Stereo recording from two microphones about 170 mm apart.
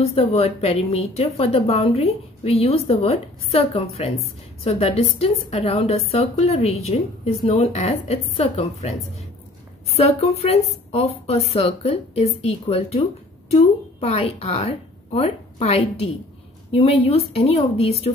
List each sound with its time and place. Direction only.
0.0 s a woman's voice: 35° left (ahead or behind)
9.9 s a woman's voice: 40° left (ahead or behind)